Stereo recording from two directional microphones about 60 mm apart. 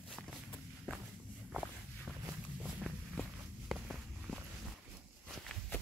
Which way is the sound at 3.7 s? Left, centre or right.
Centre.